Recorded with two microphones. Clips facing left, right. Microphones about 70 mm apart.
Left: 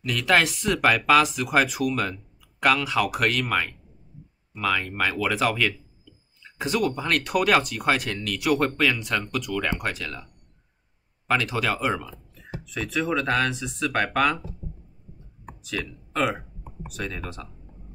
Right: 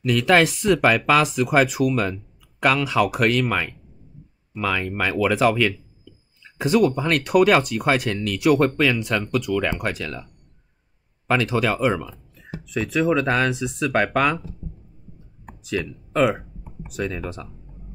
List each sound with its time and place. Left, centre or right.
0.1 s speech: right
11.5 s speech: right
15.6 s speech: centre